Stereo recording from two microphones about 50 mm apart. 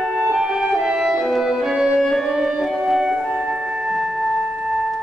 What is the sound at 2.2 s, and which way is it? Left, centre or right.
Music, centre.